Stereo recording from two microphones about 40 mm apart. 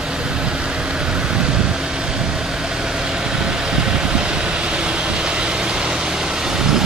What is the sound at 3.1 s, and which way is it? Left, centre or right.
Vehicle, centre.